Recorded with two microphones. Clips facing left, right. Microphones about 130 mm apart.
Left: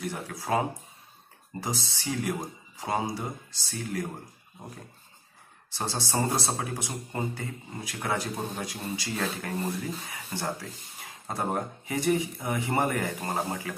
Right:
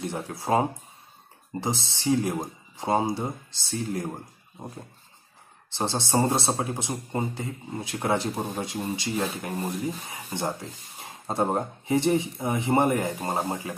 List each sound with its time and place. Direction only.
0.0 s speech: 25° right (ahead or behind)
5.7 s speech: 25° right (ahead or behind)